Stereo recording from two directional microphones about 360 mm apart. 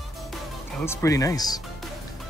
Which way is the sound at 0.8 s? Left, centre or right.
Centre.